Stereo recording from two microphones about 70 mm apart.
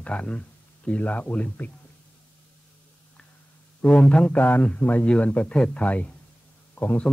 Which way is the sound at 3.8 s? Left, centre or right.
Centre.